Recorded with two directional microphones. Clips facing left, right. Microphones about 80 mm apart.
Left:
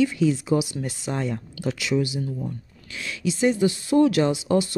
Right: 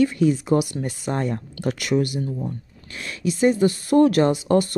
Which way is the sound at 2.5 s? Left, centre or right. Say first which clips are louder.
Right 2 dB; right.